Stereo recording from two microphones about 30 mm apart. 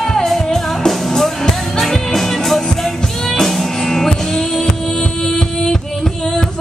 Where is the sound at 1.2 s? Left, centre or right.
Centre.